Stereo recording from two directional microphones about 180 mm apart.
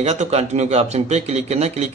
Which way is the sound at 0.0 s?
35° right (ahead or behind).